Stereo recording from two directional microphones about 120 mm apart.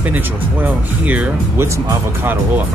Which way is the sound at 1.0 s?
10° right (ahead or behind).